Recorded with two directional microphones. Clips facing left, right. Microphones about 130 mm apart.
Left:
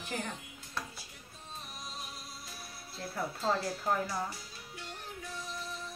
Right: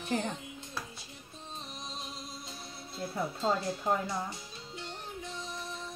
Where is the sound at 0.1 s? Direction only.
25° right (ahead or behind).